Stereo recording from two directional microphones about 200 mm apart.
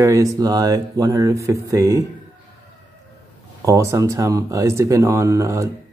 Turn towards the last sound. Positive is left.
turn(degrees=-15)  # may be behind; listen again after turning